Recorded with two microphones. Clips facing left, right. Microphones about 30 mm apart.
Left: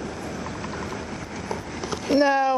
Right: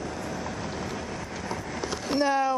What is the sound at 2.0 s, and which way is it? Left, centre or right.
Speech, left.